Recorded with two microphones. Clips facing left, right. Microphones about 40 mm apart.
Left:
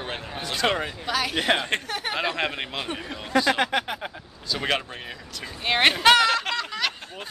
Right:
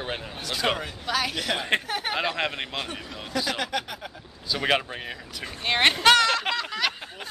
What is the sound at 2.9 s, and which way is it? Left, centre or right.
Speech, left.